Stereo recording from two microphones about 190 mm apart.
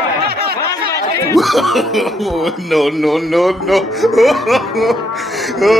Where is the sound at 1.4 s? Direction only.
Centre (ahead or behind).